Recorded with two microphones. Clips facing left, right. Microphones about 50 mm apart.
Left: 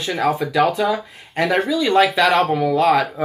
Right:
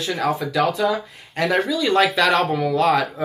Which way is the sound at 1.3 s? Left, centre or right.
Centre.